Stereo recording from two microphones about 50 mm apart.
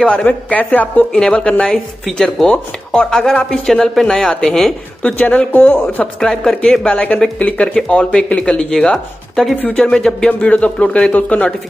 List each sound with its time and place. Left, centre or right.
0.0 s speech: left
1.1 s speech: left
2.1 s speech: centre
2.4 s speech: centre
5.0 s speech: left
6.1 s speech: centre
6.8 s speech: left